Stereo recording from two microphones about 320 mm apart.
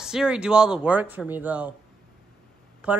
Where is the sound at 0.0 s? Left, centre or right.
Centre.